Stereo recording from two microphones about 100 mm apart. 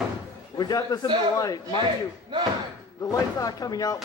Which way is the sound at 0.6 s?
40° left (ahead or behind).